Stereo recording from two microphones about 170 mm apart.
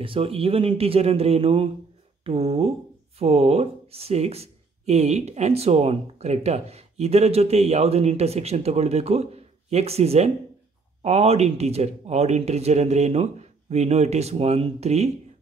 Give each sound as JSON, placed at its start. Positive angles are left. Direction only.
{"t": 0.0, "sound": "speech", "side_deg": -35}